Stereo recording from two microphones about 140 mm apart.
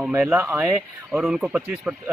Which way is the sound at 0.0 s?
10° right (ahead or behind).